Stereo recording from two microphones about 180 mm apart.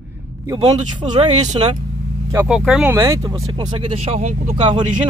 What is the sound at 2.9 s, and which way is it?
Speech, 15° right (ahead or behind).